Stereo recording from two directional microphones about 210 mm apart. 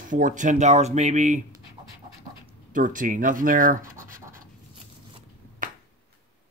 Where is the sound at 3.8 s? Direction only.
15° right (ahead or behind).